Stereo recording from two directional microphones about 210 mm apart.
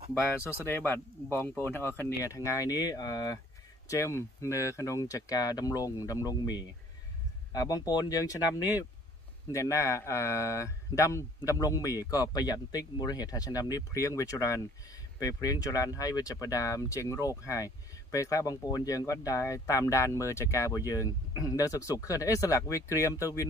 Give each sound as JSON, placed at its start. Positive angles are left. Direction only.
{"t": 0.4, "sound": "speech", "side_deg": 10}